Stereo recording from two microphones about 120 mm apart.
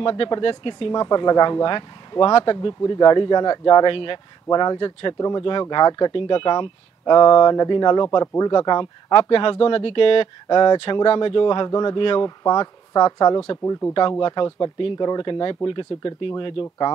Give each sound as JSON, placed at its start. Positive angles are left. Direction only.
{"t": 0.0, "sound": "speech", "side_deg": 40}
{"t": 13.7, "sound": "speech", "side_deg": 20}
{"t": 14.2, "sound": "speech", "side_deg": 40}